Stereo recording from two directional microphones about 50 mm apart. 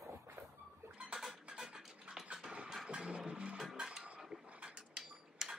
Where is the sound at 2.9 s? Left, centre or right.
Centre.